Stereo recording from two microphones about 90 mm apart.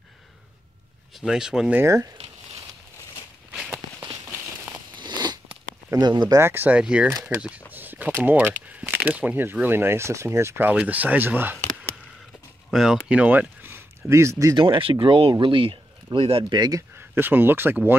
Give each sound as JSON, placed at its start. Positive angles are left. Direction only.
{"t": 1.1, "sound": "speech", "side_deg": -5}
{"t": 1.8, "sound": "a sound", "side_deg": -35}
{"t": 4.9, "sound": "biting", "side_deg": -55}
{"t": 5.9, "sound": "speech", "side_deg": -50}
{"t": 6.3, "sound": "speech", "side_deg": -25}
{"t": 6.8, "sound": "speech", "side_deg": -10}
{"t": 7.7, "sound": "a sound", "side_deg": -20}
{"t": 8.3, "sound": "speech", "side_deg": -20}
{"t": 12.7, "sound": "speech", "side_deg": -5}
{"t": 14.6, "sound": "speech", "side_deg": -80}
{"t": 16.2, "sound": "speech", "side_deg": -90}
{"t": 16.4, "sound": "speech", "side_deg": -50}
{"t": 17.1, "sound": "speech", "side_deg": -25}